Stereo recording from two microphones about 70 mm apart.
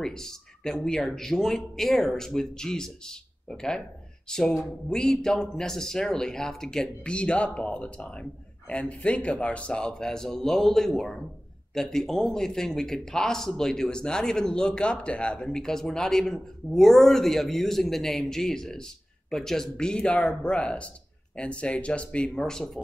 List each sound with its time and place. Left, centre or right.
0.0 s a man's voice: centre